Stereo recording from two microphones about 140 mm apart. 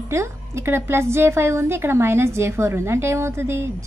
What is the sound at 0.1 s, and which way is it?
A woman's voice, 20° right (ahead or behind).